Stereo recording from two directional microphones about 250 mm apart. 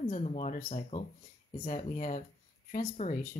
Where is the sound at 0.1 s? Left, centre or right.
Left.